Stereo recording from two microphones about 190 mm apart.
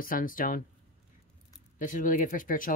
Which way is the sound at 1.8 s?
45° left (ahead or behind).